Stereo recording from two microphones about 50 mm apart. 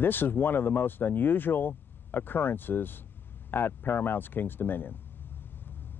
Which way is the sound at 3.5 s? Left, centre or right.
Left.